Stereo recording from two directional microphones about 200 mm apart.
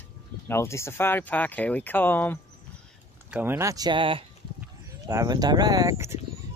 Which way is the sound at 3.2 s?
10° right (ahead or behind).